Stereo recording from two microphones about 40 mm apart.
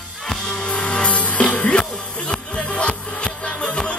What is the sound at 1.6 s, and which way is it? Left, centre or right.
Music, centre.